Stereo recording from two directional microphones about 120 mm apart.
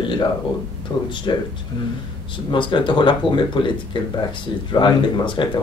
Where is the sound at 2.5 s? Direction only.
45° left (ahead or behind).